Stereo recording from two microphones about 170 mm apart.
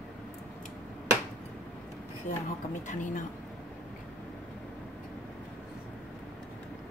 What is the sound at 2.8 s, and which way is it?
Speech, 45° left (ahead or behind).